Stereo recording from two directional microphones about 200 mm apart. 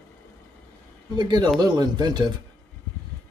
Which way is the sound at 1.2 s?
20° right (ahead or behind).